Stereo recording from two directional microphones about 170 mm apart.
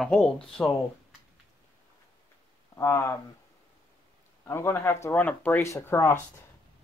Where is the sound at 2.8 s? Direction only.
15° left (ahead or behind).